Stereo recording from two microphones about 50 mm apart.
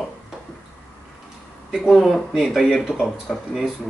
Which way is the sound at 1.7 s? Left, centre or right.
Centre.